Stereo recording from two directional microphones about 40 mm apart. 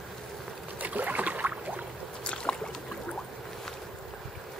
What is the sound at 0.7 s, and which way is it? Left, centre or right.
Rowboat, right.